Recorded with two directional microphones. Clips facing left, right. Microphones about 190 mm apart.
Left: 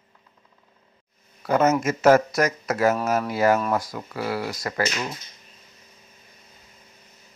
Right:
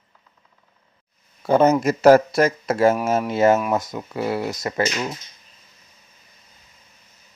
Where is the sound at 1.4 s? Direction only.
30° right (ahead or behind).